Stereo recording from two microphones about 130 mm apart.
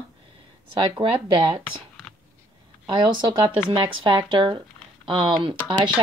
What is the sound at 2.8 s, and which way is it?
Speech, 35° right (ahead or behind).